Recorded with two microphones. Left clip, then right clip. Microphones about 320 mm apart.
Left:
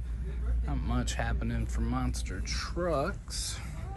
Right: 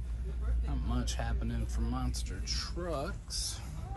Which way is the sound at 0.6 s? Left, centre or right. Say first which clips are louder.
Left 4 dB; centre.